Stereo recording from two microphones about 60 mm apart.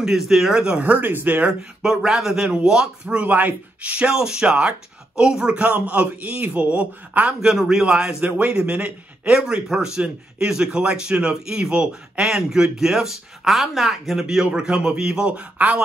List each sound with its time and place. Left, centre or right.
0.0 s a man's voice: centre
0.8 s a man's voice: right
1.4 s a man's voice: centre
3.2 s a man's voice: right
4.1 s a man's voice: centre
5.6 s a man's voice: right
7.4 s a man's voice: centre
8.2 s a man's voice: right
9.4 s a man's voice: centre